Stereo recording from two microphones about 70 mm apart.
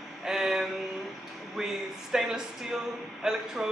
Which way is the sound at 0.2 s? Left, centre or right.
Centre.